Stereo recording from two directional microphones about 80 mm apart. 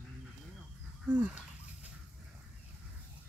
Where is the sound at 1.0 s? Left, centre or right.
Centre.